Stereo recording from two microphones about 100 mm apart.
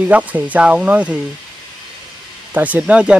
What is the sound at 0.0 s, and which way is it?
Speech, 15° right (ahead or behind).